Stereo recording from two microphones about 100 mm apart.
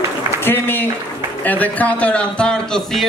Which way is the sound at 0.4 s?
20° left (ahead or behind).